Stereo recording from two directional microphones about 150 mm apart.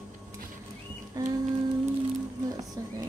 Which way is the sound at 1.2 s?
25° right (ahead or behind).